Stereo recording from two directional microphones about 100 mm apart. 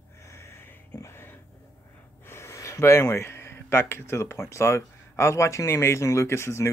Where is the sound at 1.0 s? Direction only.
25° left (ahead or behind).